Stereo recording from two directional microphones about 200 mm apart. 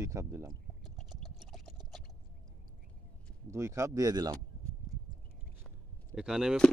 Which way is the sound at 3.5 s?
15° right (ahead or behind).